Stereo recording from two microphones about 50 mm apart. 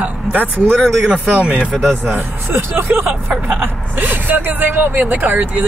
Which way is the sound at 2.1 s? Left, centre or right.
Right.